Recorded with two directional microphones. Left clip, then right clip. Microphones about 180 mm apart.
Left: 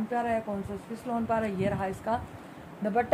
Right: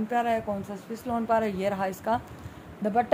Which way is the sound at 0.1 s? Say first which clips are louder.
Right 3 dB; 60° right (ahead or behind).